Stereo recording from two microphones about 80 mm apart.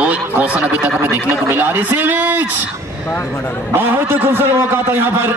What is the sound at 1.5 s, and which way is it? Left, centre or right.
A man's voice, right.